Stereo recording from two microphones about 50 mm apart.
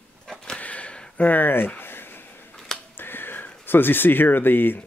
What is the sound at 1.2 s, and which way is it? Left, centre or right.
Speech, left.